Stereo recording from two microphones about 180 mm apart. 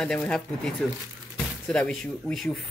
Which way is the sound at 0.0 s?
5° left (ahead or behind).